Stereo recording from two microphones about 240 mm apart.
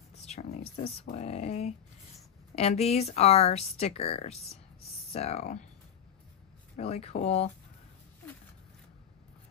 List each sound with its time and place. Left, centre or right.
0.1 s a sound: left
2.5 s speech: left
6.8 s speech: left